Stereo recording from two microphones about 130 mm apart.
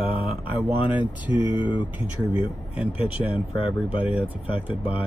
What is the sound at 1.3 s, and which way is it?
Speech, 35° left (ahead or behind).